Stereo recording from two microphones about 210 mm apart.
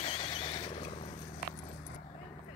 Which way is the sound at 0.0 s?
25° left (ahead or behind).